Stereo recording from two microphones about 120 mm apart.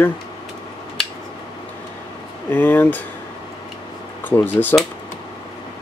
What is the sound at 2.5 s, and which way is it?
Speech, 15° left (ahead or behind).